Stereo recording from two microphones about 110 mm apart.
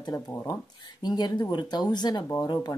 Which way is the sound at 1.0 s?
40° left (ahead or behind).